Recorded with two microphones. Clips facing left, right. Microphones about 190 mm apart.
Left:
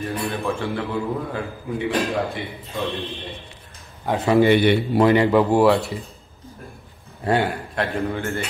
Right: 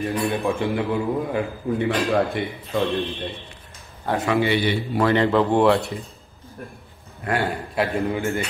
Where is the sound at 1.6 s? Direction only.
35° right (ahead or behind).